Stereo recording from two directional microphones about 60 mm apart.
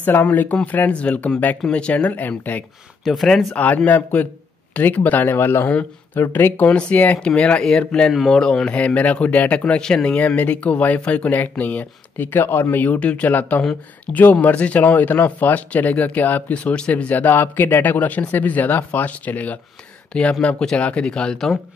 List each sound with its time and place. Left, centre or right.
0.0 s speech: left
3.0 s speech: centre
3.5 s speech: left
5.7 s speech: left
6.3 s speech: left
6.7 s speech: centre
9.7 s speech: centre
10.1 s speech: left